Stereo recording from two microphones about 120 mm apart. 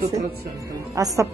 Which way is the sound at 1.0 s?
30° right (ahead or behind).